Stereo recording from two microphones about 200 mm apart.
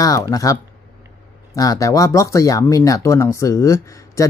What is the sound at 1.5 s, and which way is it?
Speech, 15° left (ahead or behind).